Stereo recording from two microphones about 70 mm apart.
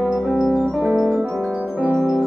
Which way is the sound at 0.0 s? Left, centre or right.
Centre.